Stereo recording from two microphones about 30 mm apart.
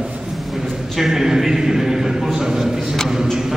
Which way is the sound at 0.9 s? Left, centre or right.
Centre.